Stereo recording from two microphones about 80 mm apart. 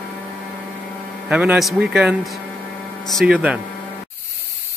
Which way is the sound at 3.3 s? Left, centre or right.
Centre.